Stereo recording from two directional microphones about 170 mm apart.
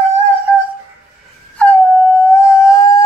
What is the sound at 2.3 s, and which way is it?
Howl, 20° left (ahead or behind).